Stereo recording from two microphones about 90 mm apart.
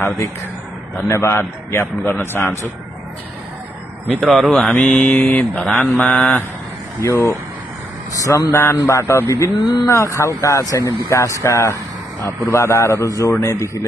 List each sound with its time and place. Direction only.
1.0 s a man's voice: 30° left (ahead or behind)
4.2 s speech: centre (ahead or behind)
4.7 s a man's voice: 20° left (ahead or behind)
5.4 s speech: 5° left (ahead or behind)
5.9 s a man's voice: 20° left (ahead or behind)
7.0 s a man's voice: 30° left (ahead or behind)
8.5 s a man's voice: 20° left (ahead or behind)
8.7 s speech: 35° left (ahead or behind)